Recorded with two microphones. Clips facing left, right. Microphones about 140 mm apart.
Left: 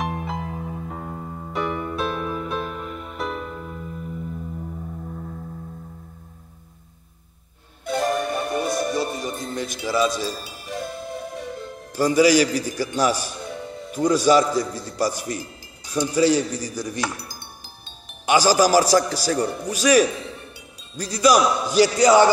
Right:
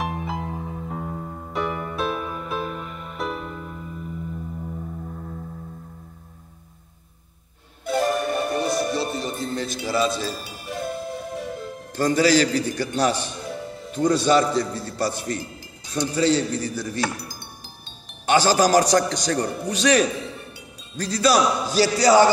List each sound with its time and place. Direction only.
0.0 s music: centre (ahead or behind)
7.8 s music: centre (ahead or behind)
8.9 s music: 15° left (ahead or behind)
10.0 s a man's voice: 15° left (ahead or behind)
10.7 s music: centre (ahead or behind)
11.9 s a man's voice: 10° left (ahead or behind)
18.2 s a man's voice: 10° left (ahead or behind)